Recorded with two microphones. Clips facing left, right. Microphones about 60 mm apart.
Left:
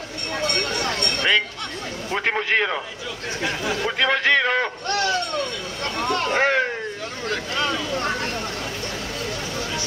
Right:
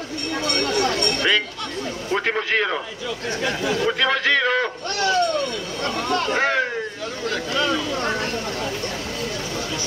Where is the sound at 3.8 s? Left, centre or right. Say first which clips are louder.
Left 1 dB; centre.